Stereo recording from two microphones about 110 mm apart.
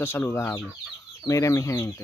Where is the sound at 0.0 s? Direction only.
20° left (ahead or behind).